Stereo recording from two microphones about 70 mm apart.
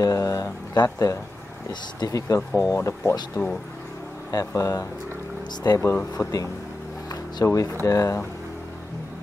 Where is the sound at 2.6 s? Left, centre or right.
Left.